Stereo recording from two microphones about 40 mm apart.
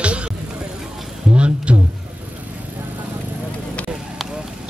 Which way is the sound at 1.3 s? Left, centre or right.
Right.